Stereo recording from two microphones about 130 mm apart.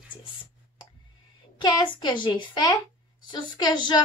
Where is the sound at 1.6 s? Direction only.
35° left (ahead or behind).